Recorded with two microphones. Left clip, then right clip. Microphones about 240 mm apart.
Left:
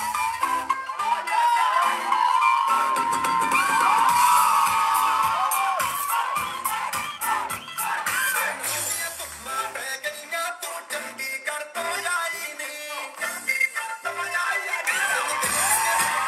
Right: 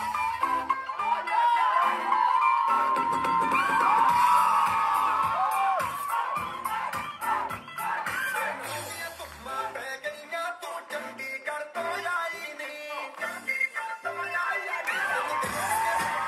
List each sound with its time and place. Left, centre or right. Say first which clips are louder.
0.0 s music: left 3 dB; centre
9.6 s music: left 4 dB; centre